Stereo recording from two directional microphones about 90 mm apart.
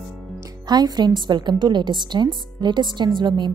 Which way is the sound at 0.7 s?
50° right (ahead or behind).